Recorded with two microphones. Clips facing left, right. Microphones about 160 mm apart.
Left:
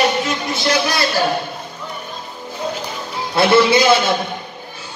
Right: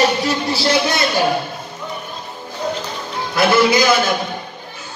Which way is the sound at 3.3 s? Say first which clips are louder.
Left 1 dB; 30° left (ahead or behind).